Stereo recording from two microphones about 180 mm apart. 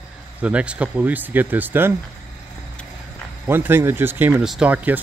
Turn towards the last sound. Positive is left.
turn(degrees=-10)  # may be behind; listen again after turning